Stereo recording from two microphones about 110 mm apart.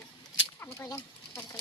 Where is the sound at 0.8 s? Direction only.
30° left (ahead or behind).